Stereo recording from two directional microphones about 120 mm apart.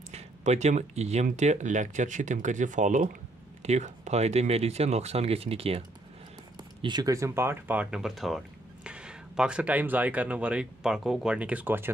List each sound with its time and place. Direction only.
0.1 s speech: 70° right (ahead or behind); by 3.1 s 90° right
3.6 s speech: 70° right (ahead or behind); by 5.8 s 55° right (ahead or behind)
6.8 s speech: 35° right (ahead or behind); by 11.9 s 15° right (ahead or behind)